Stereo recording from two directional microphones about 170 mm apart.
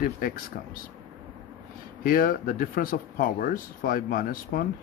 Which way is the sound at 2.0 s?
55° left (ahead or behind).